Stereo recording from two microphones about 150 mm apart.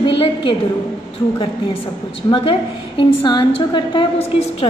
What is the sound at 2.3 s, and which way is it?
A woman's voice, 35° left (ahead or behind).